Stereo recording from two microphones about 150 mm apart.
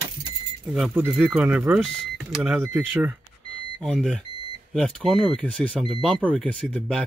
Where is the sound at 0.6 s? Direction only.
5° right (ahead or behind).